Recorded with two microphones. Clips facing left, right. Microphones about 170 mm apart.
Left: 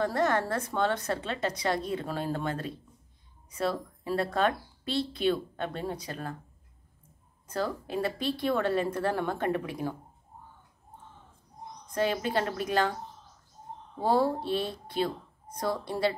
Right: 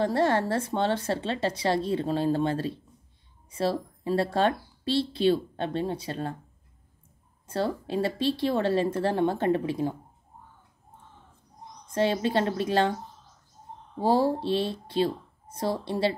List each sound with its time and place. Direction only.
0.0 s a woman's voice: 30° right (ahead or behind)
7.4 s a woman's voice: 30° right (ahead or behind)
11.9 s a woman's voice: 30° right (ahead or behind)
14.0 s a woman's voice: 25° right (ahead or behind)